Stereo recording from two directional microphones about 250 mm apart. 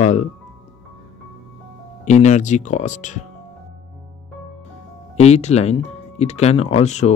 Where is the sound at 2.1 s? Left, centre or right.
Left.